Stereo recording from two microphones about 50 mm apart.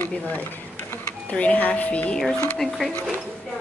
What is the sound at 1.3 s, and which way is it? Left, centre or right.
Speech, left.